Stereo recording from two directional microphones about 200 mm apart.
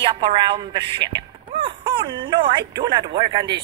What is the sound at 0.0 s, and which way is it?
A woman's voice, 25° right (ahead or behind).